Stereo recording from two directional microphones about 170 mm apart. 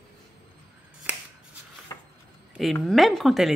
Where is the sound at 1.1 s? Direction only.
10° right (ahead or behind).